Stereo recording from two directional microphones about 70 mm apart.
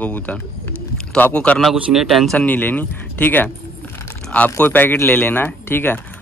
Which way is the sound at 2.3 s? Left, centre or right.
Left.